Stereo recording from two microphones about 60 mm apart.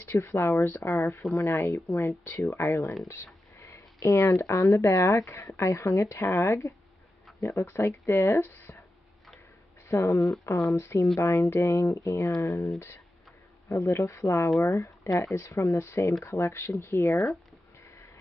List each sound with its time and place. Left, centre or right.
0.0 s speech: left
1.7 s speech: left
7.6 s speech: left
8.0 s speech: left
8.5 s a sound: left
9.8 s speech: left
10.8 s speech: left
13.7 s speech: left
13.9 s speech: left
17.8 s vehicle: left